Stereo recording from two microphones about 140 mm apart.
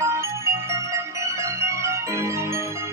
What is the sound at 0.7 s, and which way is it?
Organ, 20° right (ahead or behind).